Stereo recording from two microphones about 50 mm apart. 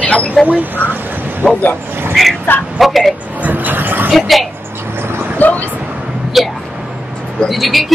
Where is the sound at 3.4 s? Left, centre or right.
Right.